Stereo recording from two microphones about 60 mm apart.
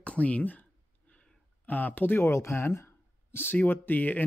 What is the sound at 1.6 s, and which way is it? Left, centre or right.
Speech, left.